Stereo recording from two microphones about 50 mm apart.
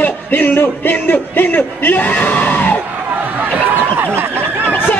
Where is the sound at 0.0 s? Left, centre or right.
Left.